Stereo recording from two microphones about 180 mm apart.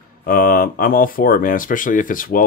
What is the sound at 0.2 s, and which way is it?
Speech, 55° left (ahead or behind).